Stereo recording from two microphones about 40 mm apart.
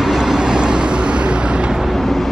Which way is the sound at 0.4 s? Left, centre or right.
Right.